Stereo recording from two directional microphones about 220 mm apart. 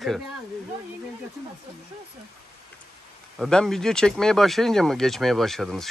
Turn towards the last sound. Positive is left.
turn(degrees=0)  # may be behind; listen again after turning